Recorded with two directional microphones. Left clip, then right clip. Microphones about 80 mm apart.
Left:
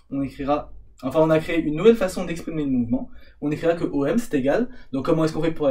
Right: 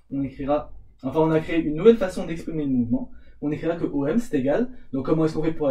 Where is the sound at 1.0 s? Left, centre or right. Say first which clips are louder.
Left 3 dB; left.